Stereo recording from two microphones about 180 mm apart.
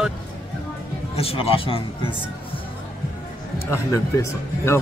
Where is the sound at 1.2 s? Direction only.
30° left (ahead or behind).